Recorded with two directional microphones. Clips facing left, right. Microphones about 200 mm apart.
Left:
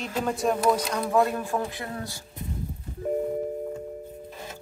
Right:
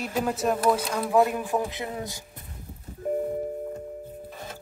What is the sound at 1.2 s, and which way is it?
Speech, 15° right (ahead or behind).